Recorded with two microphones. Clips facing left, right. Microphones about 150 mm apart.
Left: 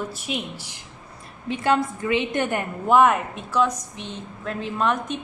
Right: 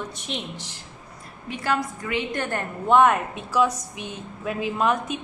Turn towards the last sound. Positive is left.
turn(degrees=-5)  # may be behind; listen again after turning